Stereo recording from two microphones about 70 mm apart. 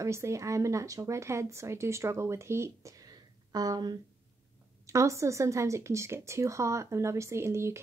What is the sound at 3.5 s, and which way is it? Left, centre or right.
Speech, right.